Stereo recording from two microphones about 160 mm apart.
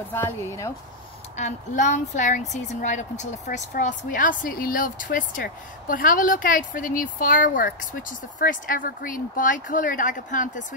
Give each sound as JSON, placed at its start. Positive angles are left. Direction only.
{"t": 0.1, "sound": "speech", "side_deg": 15}
{"t": 1.3, "sound": "a woman's voice", "side_deg": 50}